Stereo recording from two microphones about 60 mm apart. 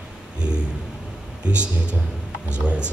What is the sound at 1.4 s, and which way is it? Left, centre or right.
A man's voice, centre.